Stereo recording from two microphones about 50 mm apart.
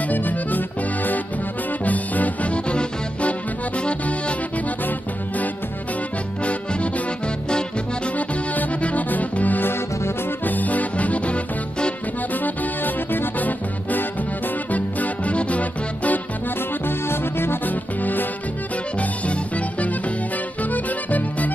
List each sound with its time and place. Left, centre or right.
0.1 s accordion: left
1.9 s music: left
6.4 s music: left
8.2 s music: left
12.4 s music: left
16.8 s music: left
17.6 s music: left